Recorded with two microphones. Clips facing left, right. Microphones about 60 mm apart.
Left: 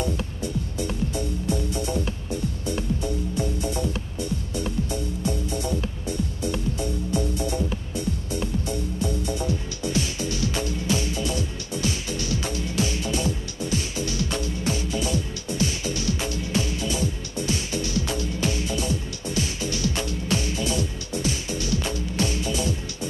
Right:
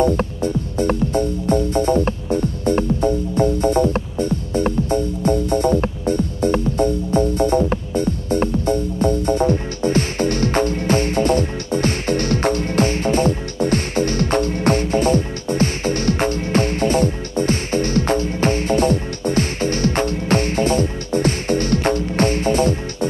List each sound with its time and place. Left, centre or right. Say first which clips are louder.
0.0 s music: right 11 dB; right